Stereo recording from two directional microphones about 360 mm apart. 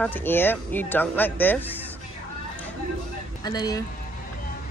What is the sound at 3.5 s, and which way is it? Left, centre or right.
Speech, centre.